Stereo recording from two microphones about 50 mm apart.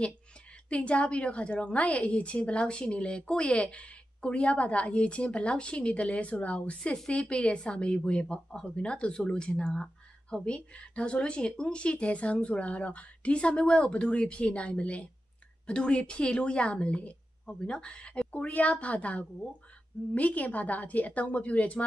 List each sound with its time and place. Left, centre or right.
0.7 s a woman's voice: left